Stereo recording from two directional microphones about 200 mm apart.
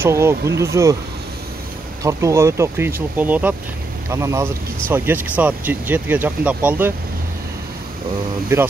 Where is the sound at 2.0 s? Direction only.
15° right (ahead or behind).